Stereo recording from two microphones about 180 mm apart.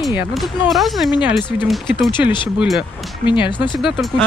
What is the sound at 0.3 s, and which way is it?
Speech, centre (ahead or behind).